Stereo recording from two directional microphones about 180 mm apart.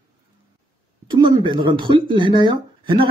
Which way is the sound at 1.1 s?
25° right (ahead or behind).